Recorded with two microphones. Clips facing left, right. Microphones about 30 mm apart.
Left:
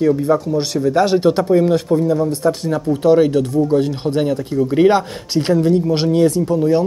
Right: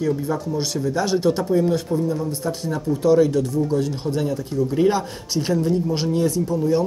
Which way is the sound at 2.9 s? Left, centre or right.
Left.